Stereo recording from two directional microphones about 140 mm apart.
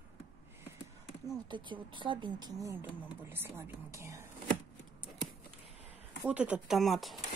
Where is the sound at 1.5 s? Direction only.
35° right (ahead or behind).